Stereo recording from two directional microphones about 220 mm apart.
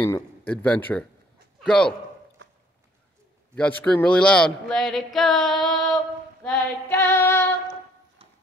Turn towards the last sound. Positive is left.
turn(degrees=10)  # may be behind; listen again after turning